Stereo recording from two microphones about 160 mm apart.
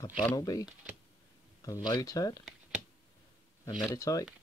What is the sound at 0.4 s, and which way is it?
Speech, 20° left (ahead or behind).